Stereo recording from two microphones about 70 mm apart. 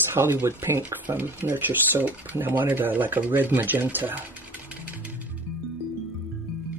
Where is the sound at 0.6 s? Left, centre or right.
Right.